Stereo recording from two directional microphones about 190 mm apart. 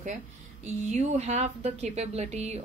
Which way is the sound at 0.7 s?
40° right (ahead or behind).